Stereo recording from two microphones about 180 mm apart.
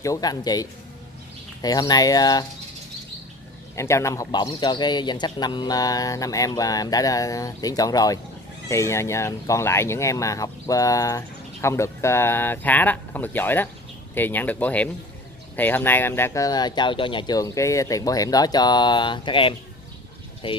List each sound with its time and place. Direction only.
0.0 s a man's voice: 20° left (ahead or behind)
3.7 s a man's voice: 15° left (ahead or behind)